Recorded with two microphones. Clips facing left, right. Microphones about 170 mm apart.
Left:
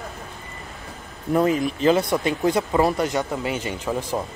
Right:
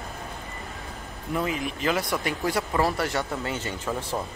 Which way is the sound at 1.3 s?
40° left (ahead or behind).